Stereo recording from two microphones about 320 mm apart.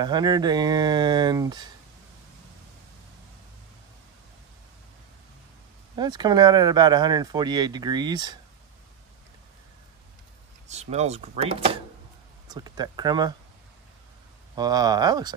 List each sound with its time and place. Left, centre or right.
0.0 s speech: centre
5.9 s speech: centre
10.7 s speech: right
14.5 s speech: centre